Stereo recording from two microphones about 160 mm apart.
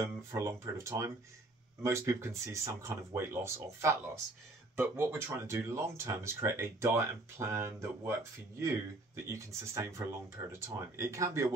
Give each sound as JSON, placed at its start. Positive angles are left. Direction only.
{"t": 0.0, "sound": "speech", "side_deg": -15}